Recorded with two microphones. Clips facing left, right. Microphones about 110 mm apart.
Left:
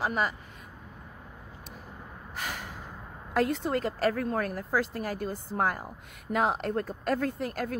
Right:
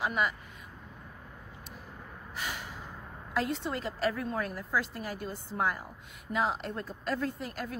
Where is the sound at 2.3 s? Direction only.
45° left (ahead or behind).